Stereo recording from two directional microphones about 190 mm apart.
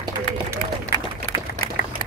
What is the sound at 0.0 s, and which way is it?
Run, 15° right (ahead or behind).